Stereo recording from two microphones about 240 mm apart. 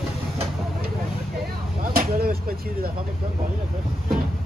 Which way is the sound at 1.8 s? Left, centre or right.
Right.